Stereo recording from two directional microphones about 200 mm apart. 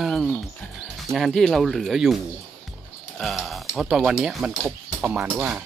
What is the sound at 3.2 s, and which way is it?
Speech, centre (ahead or behind).